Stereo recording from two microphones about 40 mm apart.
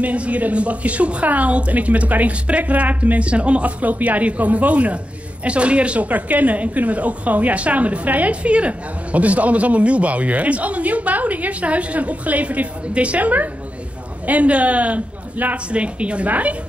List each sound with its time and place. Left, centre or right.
0.0 s a woman's voice: right
3.8 s a woman's voice: right
15.5 s a woman's voice: right